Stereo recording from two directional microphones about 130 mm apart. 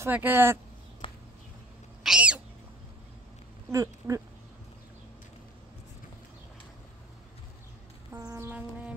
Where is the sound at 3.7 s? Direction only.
25° right (ahead or behind).